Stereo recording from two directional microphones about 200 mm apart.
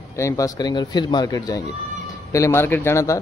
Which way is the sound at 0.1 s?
15° left (ahead or behind).